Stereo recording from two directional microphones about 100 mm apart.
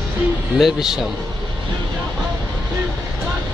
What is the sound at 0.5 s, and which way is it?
Speech, 5° right (ahead or behind).